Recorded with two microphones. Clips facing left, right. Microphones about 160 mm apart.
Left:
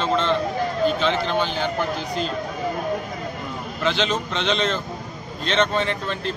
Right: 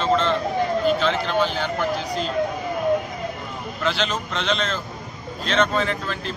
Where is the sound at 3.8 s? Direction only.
Centre (ahead or behind).